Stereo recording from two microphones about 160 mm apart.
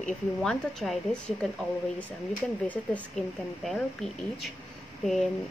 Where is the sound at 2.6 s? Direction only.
10° left (ahead or behind).